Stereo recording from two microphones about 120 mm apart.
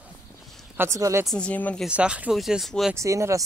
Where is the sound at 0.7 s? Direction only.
25° right (ahead or behind).